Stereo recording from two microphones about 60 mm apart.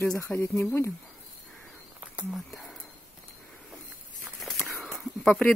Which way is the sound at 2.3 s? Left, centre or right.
Centre.